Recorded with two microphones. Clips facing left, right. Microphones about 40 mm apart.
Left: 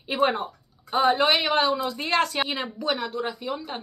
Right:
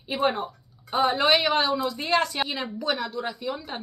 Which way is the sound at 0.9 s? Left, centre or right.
Centre.